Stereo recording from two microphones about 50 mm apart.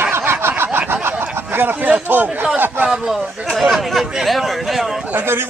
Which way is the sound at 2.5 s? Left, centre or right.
Right.